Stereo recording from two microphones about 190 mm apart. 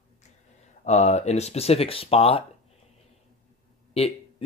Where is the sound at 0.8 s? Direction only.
35° left (ahead or behind).